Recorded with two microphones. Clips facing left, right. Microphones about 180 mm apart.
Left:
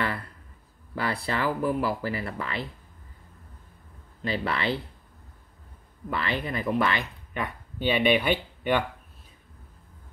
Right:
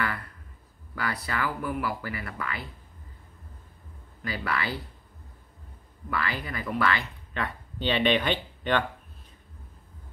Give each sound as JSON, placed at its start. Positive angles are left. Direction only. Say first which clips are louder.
{"t": 0.9, "sound": "speech", "louder": "left 3 dB", "side_deg": 30}
{"t": 4.2, "sound": "speech", "louder": "left 3 dB", "side_deg": 25}
{"t": 6.0, "sound": "speech", "louder": "left 2 dB", "side_deg": 25}